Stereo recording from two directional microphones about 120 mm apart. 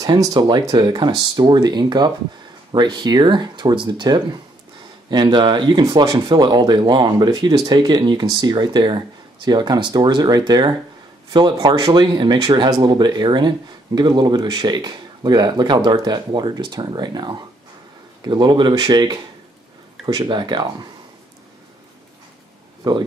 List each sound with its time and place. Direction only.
0.0 s speech: 30° right (ahead or behind)
20.2 s speech: 40° right (ahead or behind)